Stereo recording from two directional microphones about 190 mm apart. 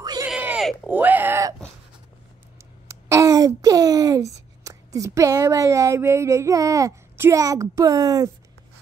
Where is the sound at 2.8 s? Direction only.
15° right (ahead or behind).